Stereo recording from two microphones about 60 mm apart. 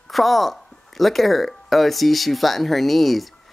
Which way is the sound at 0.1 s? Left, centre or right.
Centre.